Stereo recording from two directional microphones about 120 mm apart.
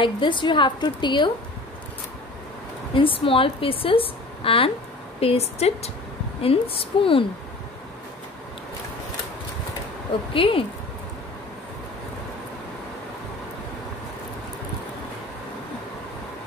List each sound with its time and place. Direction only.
0.0 s a woman's voice: 40° left (ahead or behind)
2.9 s a woman's voice: 50° left (ahead or behind)
10.3 s a woman's voice: 50° left (ahead or behind)